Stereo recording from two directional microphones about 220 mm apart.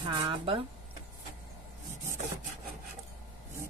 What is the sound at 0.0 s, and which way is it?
Speech, 20° right (ahead or behind).